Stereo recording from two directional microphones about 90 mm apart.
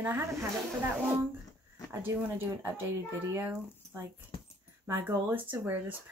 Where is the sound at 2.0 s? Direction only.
25° right (ahead or behind).